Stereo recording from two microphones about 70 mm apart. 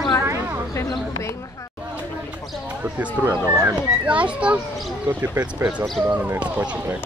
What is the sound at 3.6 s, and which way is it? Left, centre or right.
A child's voice, centre.